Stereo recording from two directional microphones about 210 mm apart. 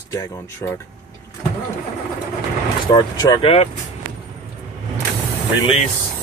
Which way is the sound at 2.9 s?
20° left (ahead or behind).